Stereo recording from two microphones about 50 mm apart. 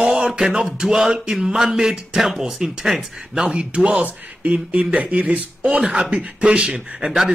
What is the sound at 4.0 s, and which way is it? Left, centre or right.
Speech, right.